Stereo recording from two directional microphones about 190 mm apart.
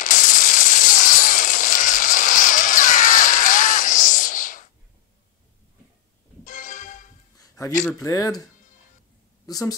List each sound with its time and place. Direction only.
0.0 s a sound: 40° left (ahead or behind)
6.4 s music: 45° left (ahead or behind)
7.3 s music: 15° left (ahead or behind)
8.0 s speech: 15° left (ahead or behind)
9.5 s a woman's voice: 20° left (ahead or behind)